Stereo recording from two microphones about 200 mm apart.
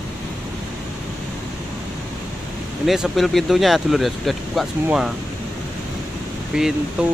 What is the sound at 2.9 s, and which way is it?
Speech, centre (ahead or behind).